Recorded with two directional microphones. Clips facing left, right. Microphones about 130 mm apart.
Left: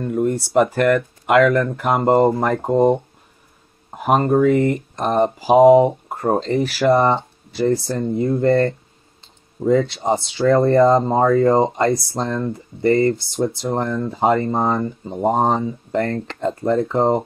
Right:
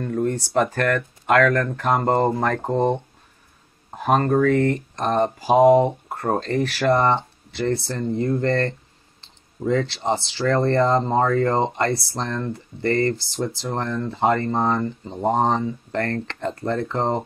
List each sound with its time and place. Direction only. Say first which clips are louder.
0.0 s a sound: left 3 dB; 10° left (ahead or behind)
0.6 s speech: left 6 dB; 5° left (ahead or behind)
2.2 s speech: left 4 dB; 20° left (ahead or behind)
2.5 s speech: left 5 dB; 10° left (ahead or behind)